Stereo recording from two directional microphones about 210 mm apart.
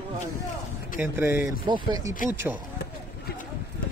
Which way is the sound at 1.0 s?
10° right (ahead or behind).